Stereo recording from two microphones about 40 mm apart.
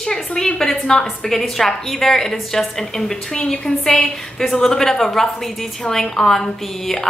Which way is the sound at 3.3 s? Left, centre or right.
Left.